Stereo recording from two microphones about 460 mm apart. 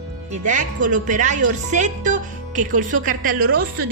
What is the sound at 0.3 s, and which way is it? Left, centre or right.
Speech, centre.